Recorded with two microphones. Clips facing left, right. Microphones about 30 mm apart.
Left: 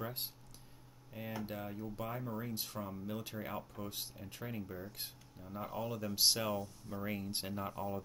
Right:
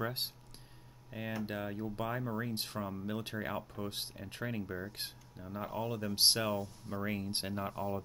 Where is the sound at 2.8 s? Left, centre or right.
Right.